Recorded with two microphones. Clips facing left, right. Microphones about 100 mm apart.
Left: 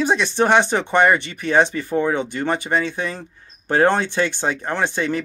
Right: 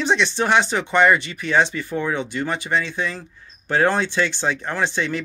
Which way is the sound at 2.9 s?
20° left (ahead or behind).